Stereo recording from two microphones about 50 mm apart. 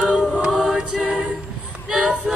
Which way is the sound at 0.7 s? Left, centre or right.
Centre.